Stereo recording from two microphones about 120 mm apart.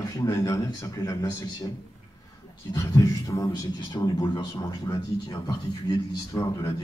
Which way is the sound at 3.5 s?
35° left (ahead or behind).